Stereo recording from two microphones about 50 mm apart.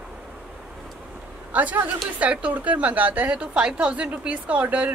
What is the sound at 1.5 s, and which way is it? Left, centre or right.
A man's voice, right.